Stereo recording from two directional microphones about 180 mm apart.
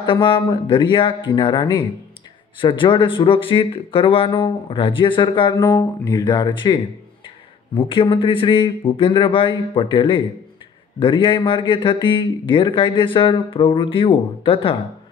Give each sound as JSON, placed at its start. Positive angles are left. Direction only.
{"t": 0.0, "sound": "speech", "side_deg": 25}